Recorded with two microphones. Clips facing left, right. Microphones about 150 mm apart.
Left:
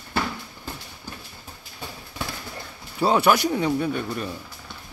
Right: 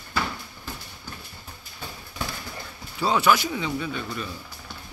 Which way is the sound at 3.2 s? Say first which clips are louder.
Left 3 dB; 60° left (ahead or behind).